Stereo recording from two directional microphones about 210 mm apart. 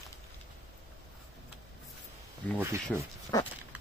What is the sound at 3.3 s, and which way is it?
Dog, 15° left (ahead or behind).